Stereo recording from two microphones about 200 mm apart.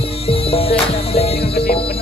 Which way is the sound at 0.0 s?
30° left (ahead or behind).